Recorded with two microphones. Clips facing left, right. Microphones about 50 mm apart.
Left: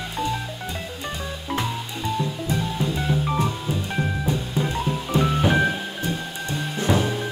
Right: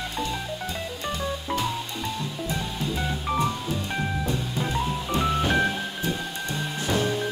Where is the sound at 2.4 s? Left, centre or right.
Centre.